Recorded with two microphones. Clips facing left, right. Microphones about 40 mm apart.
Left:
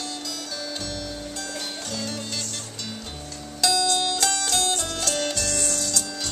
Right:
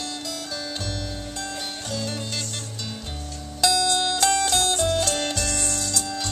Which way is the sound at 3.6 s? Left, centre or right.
Centre.